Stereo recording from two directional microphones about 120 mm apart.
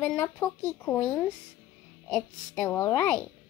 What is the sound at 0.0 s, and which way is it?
A woman's voice, 15° left (ahead or behind).